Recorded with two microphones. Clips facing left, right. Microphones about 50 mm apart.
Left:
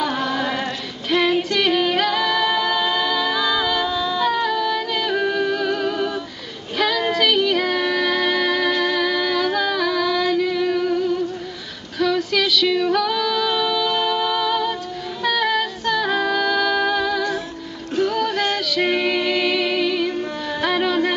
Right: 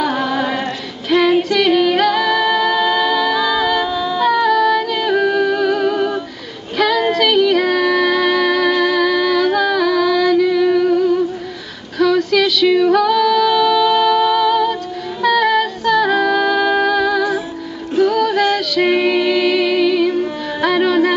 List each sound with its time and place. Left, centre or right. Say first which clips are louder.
0.0 s female singing: right 4 dB; centre
1.1 s singing: right 5 dB; centre
3.9 s a sound: right 4 dB; right
4.3 s music: right 7 dB; centre
7.1 s music: right 5 dB; centre
15.2 s female singing: right 6 dB; centre
16.8 s music: right 5 dB; centre